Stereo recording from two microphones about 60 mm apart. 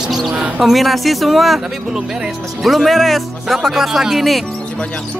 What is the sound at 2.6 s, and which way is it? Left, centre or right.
Speech, centre.